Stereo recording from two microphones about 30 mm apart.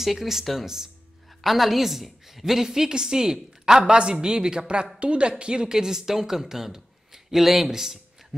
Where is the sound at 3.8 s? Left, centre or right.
Right.